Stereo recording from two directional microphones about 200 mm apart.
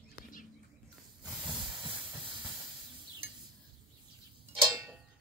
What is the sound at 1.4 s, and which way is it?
Hiss, centre (ahead or behind).